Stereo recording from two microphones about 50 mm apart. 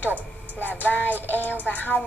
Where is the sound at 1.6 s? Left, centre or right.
Left.